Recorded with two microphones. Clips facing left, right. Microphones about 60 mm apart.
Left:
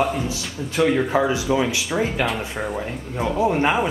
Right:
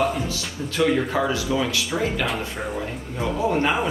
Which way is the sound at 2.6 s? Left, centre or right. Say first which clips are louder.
Left 2 dB; centre.